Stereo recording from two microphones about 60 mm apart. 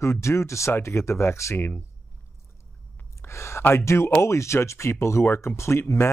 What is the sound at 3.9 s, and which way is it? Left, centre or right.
Speech, left.